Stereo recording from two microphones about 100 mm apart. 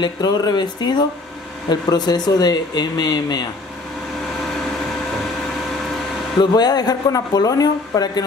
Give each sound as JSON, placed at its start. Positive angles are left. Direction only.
{"t": 0.0, "sound": "speech", "side_deg": 40}
{"t": 6.4, "sound": "a woman's voice", "side_deg": 45}